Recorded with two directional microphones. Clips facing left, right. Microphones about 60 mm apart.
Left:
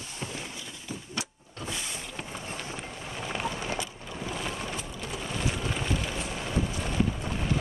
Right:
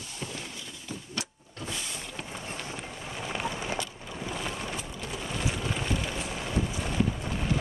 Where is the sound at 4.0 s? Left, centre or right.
Centre.